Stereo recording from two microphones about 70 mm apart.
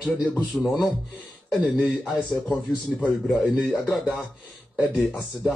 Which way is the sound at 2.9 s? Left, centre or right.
Centre.